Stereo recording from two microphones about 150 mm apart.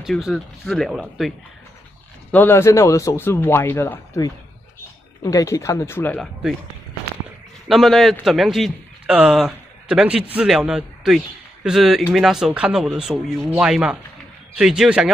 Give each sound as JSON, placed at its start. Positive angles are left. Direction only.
{"t": 0.0, "sound": "speech", "side_deg": 0}
{"t": 2.3, "sound": "a man's voice", "side_deg": 15}
{"t": 7.6, "sound": "a man's voice", "side_deg": 0}